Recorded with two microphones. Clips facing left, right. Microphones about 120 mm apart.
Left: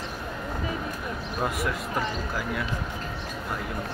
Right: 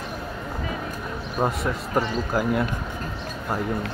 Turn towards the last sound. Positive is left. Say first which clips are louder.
# right 8 dB
turn(degrees=-50)  # may be behind; listen again after turning